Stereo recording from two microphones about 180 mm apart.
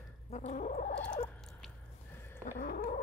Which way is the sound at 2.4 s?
50° left (ahead or behind).